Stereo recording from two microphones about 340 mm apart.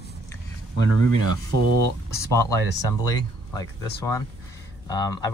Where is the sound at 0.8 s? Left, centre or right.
Right.